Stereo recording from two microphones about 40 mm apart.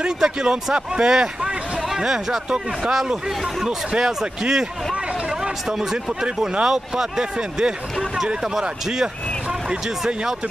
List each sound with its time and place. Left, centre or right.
0.2 s speech: centre